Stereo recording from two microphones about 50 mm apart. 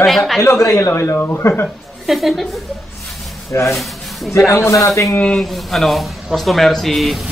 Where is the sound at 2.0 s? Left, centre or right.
Centre.